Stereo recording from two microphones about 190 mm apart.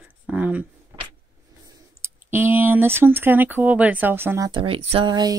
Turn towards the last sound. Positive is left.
turn(degrees=-25)  # may be behind; listen again after turning